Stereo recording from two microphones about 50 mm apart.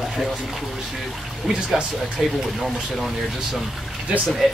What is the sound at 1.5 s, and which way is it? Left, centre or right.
Speech, centre.